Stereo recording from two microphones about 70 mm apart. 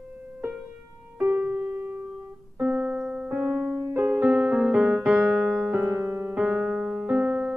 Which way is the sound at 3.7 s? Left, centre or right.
Right.